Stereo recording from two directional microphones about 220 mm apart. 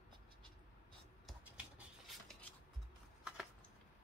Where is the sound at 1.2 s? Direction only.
5° right (ahead or behind).